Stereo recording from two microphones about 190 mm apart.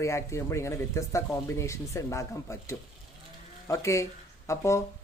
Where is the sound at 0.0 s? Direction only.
15° left (ahead or behind).